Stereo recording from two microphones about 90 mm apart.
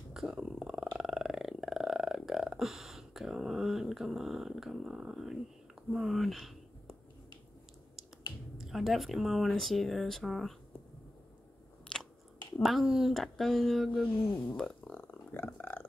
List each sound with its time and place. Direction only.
0.1 s purr: 5° right (ahead or behind)
5.9 s a sound: centre (ahead or behind)
8.5 s speech: 5° right (ahead or behind)
11.9 s biting: 10° left (ahead or behind)
12.6 s speech: 5° right (ahead or behind)
14.9 s a sound: 15° left (ahead or behind)